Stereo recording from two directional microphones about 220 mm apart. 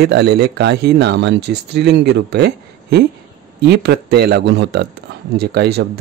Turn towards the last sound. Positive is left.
turn(degrees=-45)  # may be behind; listen again after turning